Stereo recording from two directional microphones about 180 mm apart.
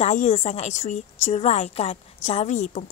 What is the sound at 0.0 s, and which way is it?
Speech, 40° left (ahead or behind).